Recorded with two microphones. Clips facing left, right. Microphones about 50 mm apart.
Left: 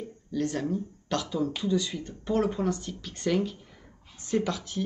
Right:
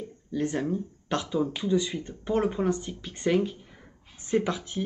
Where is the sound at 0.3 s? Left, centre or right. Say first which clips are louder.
Right 1 dB; centre.